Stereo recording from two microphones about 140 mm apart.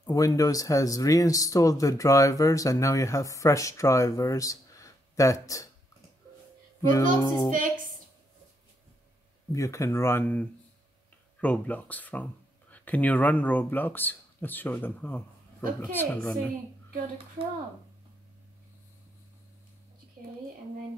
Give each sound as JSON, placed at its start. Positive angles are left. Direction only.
{"t": 0.0, "sound": "speech", "side_deg": 25}
{"t": 6.9, "sound": "speech", "side_deg": 25}
{"t": 9.5, "sound": "speech", "side_deg": 20}
{"t": 11.4, "sound": "speech", "side_deg": 10}